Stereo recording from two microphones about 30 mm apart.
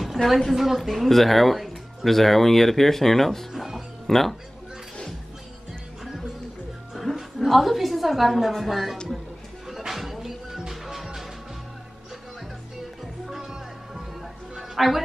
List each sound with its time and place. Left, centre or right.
0.2 s a woman's voice: centre
3.5 s music: centre
4.1 s speech: centre
6.0 s music: centre
7.3 s a woman's voice: centre
9.7 s music: centre
13.4 s music: centre
14.6 s music: centre